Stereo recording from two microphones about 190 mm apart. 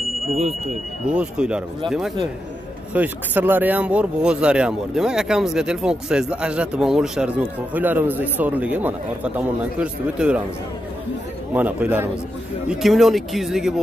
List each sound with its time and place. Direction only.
0.3 s speech: 35° right (ahead or behind)
1.0 s speech: 5° right (ahead or behind)
11.5 s a man's voice: 10° right (ahead or behind)